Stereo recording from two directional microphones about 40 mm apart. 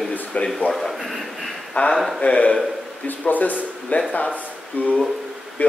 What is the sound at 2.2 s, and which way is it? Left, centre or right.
Speech, left.